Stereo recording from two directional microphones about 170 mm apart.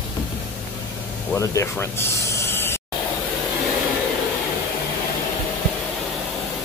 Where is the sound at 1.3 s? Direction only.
15° left (ahead or behind).